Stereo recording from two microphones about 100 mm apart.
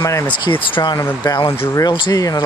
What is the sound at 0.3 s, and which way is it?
Speech, 55° left (ahead or behind).